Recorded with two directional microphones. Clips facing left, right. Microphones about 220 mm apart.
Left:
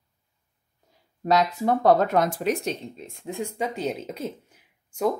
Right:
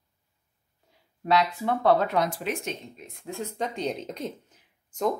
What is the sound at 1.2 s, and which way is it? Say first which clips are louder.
Speech: left 3 dB; 40° left (ahead or behind).